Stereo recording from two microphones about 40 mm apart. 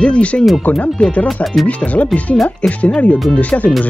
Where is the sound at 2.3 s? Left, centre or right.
Centre.